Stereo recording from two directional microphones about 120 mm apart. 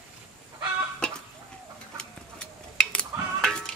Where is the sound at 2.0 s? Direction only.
5° left (ahead or behind).